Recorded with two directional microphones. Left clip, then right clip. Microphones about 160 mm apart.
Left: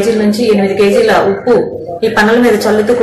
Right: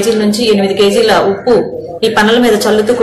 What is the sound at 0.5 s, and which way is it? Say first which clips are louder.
A woman's voice: even; 10° right (ahead or behind).